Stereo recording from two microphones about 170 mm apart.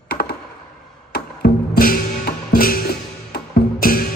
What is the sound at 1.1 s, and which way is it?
Music, 65° left (ahead or behind).